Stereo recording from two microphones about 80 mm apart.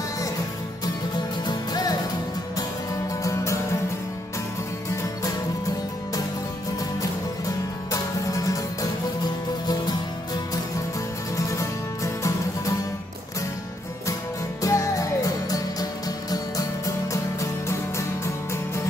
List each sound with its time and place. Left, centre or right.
1.1 s music: left
7.0 s music: left
9.7 s music: left
11.3 s music: left
14.6 s music: left